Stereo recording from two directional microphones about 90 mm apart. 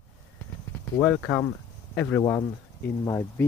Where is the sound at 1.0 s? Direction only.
10° left (ahead or behind).